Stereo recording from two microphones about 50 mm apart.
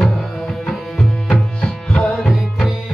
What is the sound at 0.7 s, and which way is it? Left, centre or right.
Tabla, centre.